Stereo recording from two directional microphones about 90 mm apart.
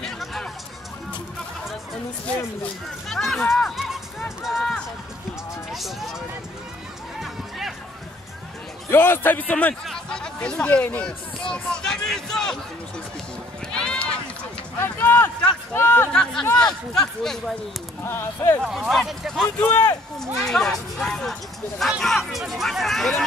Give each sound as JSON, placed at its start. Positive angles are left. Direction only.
{"t": 0.0, "sound": "music", "side_deg": 5}
{"t": 3.1, "sound": "speech", "side_deg": 0}
{"t": 3.5, "sound": "run", "side_deg": 0}
{"t": 5.7, "sound": "speech", "side_deg": 0}
{"t": 7.2, "sound": "run", "side_deg": -5}
{"t": 8.9, "sound": "a man's voice", "side_deg": 25}
{"t": 11.5, "sound": "a sound", "side_deg": 10}
{"t": 13.7, "sound": "run", "side_deg": 10}
{"t": 14.8, "sound": "speech", "side_deg": 25}
{"t": 16.1, "sound": "speech", "side_deg": 5}
{"t": 18.0, "sound": "a man's voice", "side_deg": 25}
{"t": 18.6, "sound": "speech", "side_deg": -5}
{"t": 19.6, "sound": "a man's voice", "side_deg": 20}
{"t": 20.3, "sound": "speech", "side_deg": 5}